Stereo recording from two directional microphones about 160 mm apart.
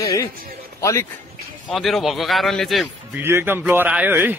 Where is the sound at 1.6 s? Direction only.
Centre (ahead or behind).